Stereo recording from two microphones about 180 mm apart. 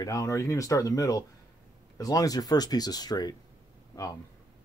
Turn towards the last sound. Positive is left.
turn(degrees=20)  # may be behind; listen again after turning